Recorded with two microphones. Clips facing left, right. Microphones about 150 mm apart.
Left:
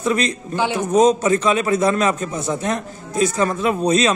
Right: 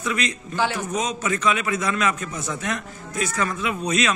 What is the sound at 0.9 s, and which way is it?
A man's voice, 35° left (ahead or behind).